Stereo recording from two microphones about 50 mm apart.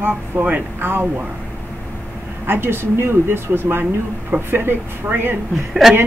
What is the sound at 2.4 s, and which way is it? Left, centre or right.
Speech, right.